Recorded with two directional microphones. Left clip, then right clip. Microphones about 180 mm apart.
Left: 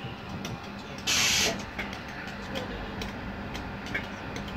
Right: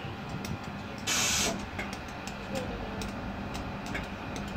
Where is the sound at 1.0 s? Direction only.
60° right (ahead or behind).